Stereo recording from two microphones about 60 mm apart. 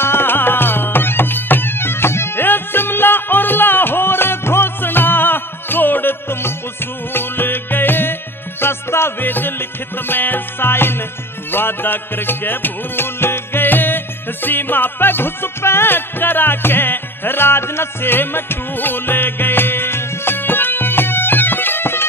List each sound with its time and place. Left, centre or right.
0.0 s music: left